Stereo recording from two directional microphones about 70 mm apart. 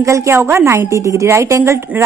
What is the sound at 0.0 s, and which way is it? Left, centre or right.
A woman's voice, right.